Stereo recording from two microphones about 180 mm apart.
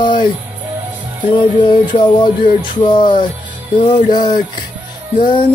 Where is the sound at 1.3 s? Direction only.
30° left (ahead or behind).